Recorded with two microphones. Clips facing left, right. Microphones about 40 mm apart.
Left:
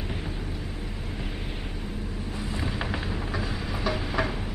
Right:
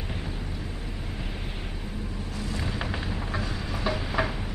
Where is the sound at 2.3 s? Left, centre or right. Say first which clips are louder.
Even; left.